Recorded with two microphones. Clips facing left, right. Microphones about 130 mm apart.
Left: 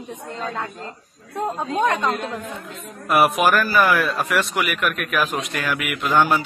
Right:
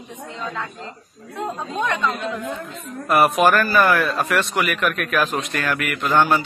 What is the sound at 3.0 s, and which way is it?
A man's voice, 5° left (ahead or behind).